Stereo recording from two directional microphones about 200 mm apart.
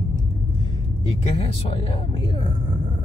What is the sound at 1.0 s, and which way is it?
Speech, 25° left (ahead or behind).